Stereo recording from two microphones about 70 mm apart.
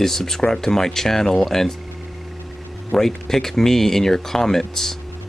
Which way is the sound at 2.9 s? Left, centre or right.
Centre.